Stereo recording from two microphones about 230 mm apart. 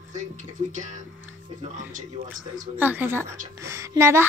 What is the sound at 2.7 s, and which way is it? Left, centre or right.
Speech, centre.